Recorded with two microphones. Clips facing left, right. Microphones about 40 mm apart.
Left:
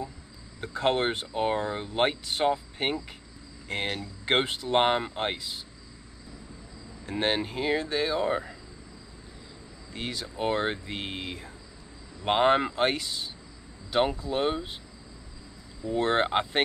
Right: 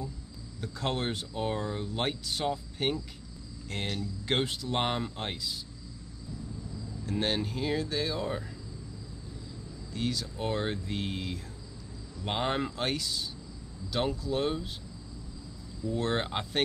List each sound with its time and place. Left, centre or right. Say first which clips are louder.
0.6 s speech: left 7 dB; left
7.1 s speech: left 3 dB; left
9.9 s speech: even; left
15.8 s speech: left 5 dB; left